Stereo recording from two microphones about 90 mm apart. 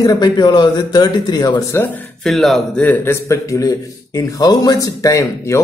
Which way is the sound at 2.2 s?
Centre (ahead or behind).